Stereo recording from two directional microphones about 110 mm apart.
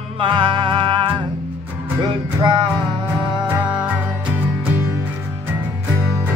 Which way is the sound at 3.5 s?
15° right (ahead or behind).